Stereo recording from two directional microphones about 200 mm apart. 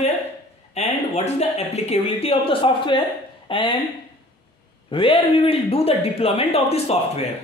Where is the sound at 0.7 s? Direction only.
35° left (ahead or behind).